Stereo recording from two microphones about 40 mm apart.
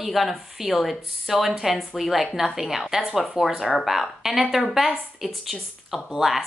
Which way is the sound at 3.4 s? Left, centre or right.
Centre.